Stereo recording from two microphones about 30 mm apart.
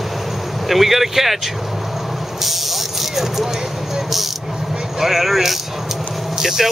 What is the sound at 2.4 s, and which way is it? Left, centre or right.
Music, centre.